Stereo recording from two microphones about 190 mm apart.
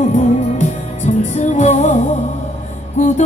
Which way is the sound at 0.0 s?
40° left (ahead or behind).